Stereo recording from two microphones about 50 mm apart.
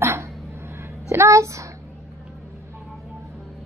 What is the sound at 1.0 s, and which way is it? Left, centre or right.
Speech, right.